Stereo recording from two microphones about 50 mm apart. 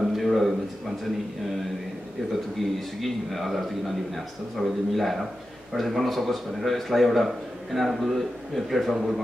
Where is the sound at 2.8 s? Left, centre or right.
Centre.